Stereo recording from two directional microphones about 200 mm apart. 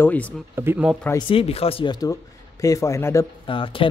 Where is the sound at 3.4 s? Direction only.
25° left (ahead or behind).